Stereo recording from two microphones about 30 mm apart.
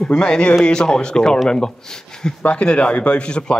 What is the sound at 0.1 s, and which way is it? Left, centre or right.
Speech, left.